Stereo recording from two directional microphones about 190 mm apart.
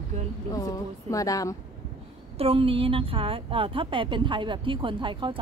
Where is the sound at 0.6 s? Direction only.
20° left (ahead or behind).